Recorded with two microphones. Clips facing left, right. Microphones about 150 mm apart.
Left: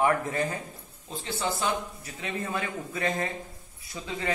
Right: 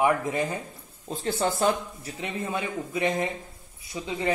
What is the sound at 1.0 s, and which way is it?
Speech, 45° right (ahead or behind).